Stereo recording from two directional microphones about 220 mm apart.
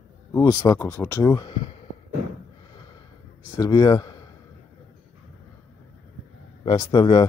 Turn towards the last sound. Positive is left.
turn(degrees=20)  # may be behind; listen again after turning